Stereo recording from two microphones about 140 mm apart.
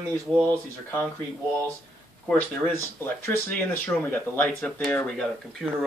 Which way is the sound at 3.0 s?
15° left (ahead or behind).